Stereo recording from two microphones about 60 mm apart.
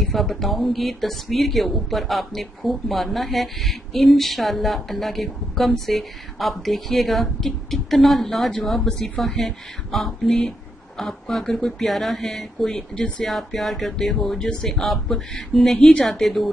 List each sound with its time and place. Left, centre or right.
0.0 s speech: centre
13.3 s speech: centre
14.5 s speech: centre
14.8 s speech: centre
15.8 s speech: centre
16.1 s speech: centre